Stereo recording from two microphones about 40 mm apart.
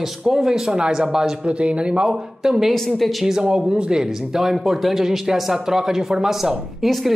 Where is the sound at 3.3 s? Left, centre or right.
Centre.